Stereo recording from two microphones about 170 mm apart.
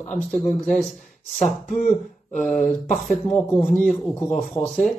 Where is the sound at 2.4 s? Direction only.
Centre (ahead or behind).